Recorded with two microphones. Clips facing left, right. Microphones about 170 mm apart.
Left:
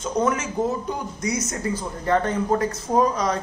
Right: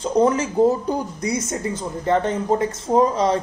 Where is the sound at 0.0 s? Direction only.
35° right (ahead or behind).